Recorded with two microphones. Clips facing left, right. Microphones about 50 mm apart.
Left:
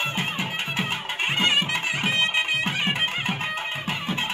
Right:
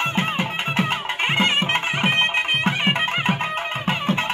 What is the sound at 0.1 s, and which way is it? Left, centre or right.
Music, right.